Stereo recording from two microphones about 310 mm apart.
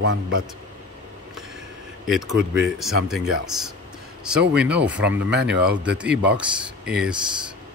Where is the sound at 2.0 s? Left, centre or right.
Centre.